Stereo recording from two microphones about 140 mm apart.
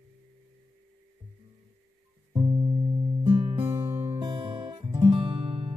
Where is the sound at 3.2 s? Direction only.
15° right (ahead or behind).